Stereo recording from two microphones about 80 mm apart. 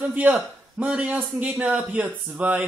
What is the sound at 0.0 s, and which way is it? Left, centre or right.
A man's voice, centre.